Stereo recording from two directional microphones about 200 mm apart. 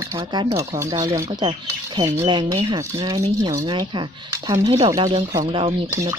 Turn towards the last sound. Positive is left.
turn(degrees=-25)  # may be behind; listen again after turning